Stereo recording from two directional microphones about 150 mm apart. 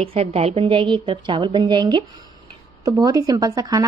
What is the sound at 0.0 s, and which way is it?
A woman's voice, 40° right (ahead or behind).